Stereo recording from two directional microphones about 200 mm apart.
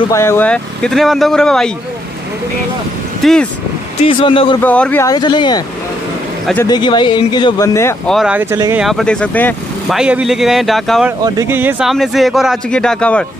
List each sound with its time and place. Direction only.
0.1 s speech: 15° left (ahead or behind)
3.2 s speech: centre (ahead or behind)
4.0 s speech: 25° left (ahead or behind)
4.6 s speech: 5° left (ahead or behind)
5.0 s speech: 20° left (ahead or behind)
6.4 s a man's voice: 5° left (ahead or behind)
6.7 s speech: 25° left (ahead or behind)
8.1 s speech: 5° right (ahead or behind)
8.8 s speech: centre (ahead or behind)
9.9 s speech: 5° right (ahead or behind)
11.2 s speech: 15° right (ahead or behind); by 13.2 s 5° left (ahead or behind)